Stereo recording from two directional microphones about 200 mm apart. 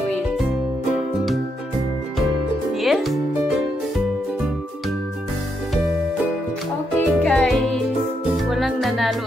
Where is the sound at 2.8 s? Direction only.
Centre (ahead or behind).